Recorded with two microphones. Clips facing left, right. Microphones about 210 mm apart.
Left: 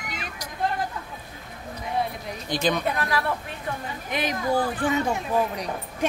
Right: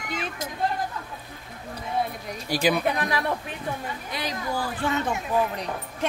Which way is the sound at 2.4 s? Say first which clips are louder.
Right 2 dB; 10° right (ahead or behind).